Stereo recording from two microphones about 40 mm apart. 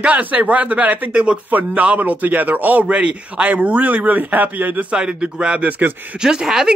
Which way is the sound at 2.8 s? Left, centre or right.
Right.